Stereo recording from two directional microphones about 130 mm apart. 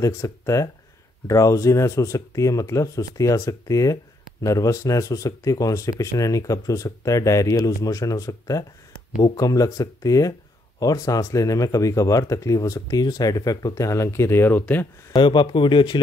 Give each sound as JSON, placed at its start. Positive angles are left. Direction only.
{"t": 0.0, "sound": "speech", "side_deg": 25}
{"t": 15.1, "sound": "speech", "side_deg": 35}